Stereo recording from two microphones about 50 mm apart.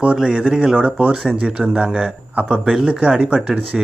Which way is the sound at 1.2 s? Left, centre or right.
Centre.